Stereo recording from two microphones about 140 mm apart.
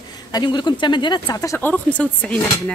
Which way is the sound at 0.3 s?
30° left (ahead or behind).